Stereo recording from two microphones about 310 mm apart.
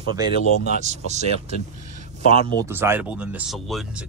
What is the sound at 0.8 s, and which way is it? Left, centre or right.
Speech, right.